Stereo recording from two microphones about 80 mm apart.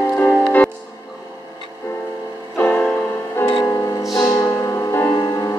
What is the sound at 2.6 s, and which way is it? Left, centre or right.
Music, left.